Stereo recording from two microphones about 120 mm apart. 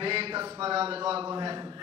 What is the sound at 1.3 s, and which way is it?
Speech, 40° right (ahead or behind).